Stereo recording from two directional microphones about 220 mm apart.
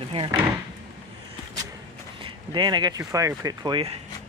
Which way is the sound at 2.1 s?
20° right (ahead or behind).